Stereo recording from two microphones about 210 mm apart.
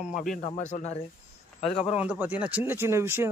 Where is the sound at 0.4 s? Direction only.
30° left (ahead or behind).